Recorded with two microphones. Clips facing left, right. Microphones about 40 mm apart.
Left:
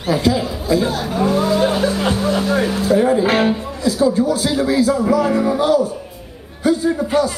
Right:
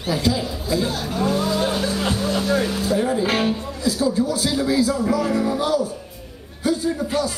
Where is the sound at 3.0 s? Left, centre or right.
Left.